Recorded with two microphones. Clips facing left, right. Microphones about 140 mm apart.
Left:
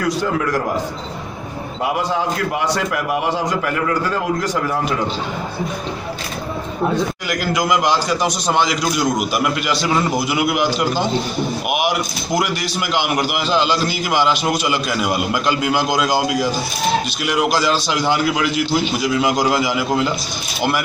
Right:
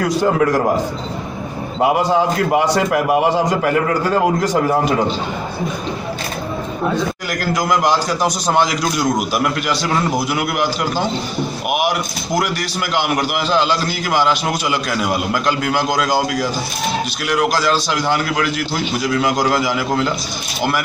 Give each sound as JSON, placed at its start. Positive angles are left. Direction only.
{"t": 0.2, "sound": "a man's voice", "side_deg": -40}
{"t": 4.4, "sound": "a man's voice", "side_deg": -35}
{"t": 7.5, "sound": "a man's voice", "side_deg": 0}
{"t": 12.9, "sound": "a man's voice", "side_deg": 0}
{"t": 13.5, "sound": "a man's voice", "side_deg": 10}